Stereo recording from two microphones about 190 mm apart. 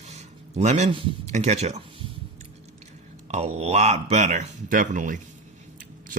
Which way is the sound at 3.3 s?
35° right (ahead or behind).